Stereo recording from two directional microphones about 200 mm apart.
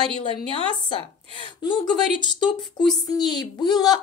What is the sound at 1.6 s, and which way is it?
Speech, 25° left (ahead or behind).